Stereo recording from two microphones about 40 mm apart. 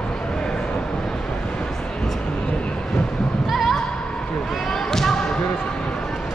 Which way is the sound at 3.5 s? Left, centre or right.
Centre.